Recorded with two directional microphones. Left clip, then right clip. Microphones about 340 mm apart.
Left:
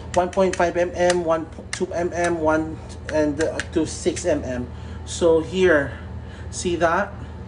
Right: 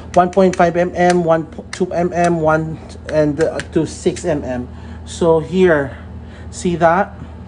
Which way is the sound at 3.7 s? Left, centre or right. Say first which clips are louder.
Right 5 dB; right.